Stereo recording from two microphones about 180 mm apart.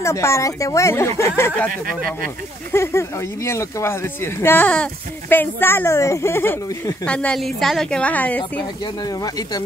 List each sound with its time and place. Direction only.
0.0 s speech: 15° left (ahead or behind)
2.7 s speech: 15° left (ahead or behind)